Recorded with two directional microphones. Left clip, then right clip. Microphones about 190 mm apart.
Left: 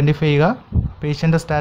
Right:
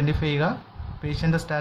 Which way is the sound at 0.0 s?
35° left (ahead or behind).